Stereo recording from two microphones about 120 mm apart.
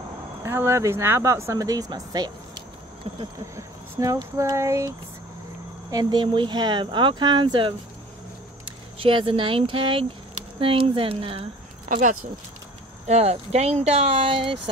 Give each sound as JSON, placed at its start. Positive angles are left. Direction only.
{"t": 0.4, "sound": "speech", "side_deg": -20}
{"t": 3.3, "sound": "speech", "side_deg": -25}
{"t": 13.0, "sound": "speech", "side_deg": -65}